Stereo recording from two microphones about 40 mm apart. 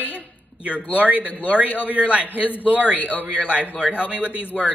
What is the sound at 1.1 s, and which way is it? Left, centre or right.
Speech, right.